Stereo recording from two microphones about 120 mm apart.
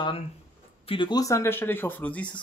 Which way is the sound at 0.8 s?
40° left (ahead or behind).